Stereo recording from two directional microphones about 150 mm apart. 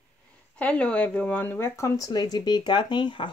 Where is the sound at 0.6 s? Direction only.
10° left (ahead or behind).